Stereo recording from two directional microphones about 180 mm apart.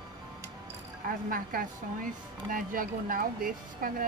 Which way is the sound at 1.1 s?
50° right (ahead or behind).